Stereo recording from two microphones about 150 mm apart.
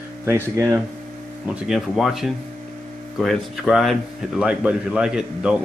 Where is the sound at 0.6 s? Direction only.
15° right (ahead or behind).